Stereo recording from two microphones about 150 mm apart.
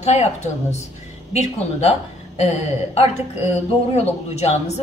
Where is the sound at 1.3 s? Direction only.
45° left (ahead or behind).